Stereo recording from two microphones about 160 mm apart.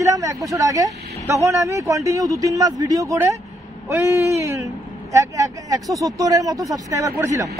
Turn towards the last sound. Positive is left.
turn(degrees=-20)  # may be behind; listen again after turning